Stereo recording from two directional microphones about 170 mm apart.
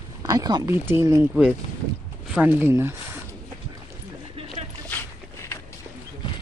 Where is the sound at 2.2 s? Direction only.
5° right (ahead or behind).